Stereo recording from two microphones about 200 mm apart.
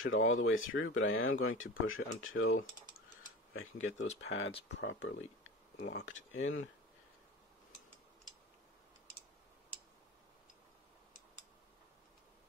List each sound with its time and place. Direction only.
0.0 s speech: 85° left
4.2 s speech: 65° left (ahead or behind)